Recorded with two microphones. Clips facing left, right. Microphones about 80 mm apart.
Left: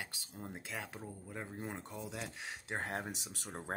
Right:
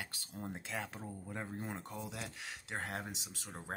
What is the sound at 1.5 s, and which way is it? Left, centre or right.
Speech, centre.